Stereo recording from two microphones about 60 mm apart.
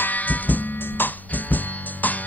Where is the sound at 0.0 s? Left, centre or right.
Left.